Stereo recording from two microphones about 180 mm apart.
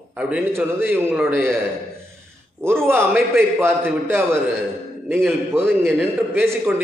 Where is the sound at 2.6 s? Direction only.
15° right (ahead or behind).